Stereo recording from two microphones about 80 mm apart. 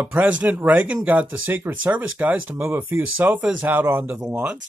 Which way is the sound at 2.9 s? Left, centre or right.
Right.